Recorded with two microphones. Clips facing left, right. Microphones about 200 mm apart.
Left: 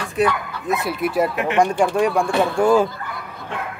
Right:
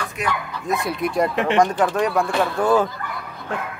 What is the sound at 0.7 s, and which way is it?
A man's voice, 5° left (ahead or behind).